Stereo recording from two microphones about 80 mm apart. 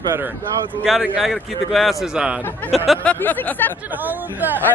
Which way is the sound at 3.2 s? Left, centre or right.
Left.